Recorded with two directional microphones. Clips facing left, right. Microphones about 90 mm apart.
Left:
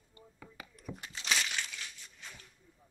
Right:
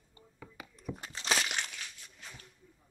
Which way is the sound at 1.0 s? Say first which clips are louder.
Right 2 dB; 35° right (ahead or behind).